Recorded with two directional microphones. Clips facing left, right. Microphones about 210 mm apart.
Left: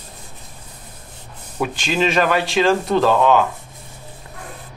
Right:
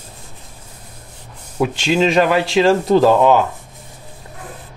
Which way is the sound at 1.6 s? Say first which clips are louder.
Right 4 dB; 25° right (ahead or behind).